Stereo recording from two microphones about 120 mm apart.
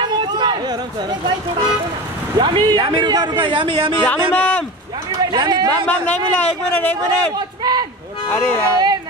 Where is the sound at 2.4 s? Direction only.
40° right (ahead or behind).